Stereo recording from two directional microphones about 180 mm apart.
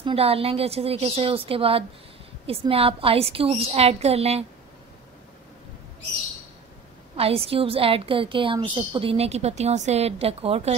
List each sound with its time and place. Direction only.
0.0 s a woman's voice: 30° right (ahead or behind)
7.2 s a woman's voice: 35° right (ahead or behind)